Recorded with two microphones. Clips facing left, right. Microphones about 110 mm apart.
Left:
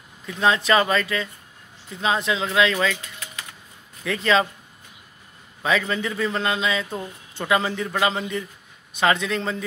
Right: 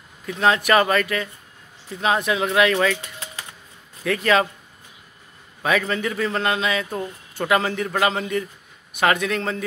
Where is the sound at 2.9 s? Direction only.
30° right (ahead or behind).